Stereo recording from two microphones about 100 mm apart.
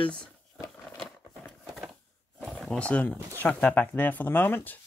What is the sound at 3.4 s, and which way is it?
Speech, 15° left (ahead or behind).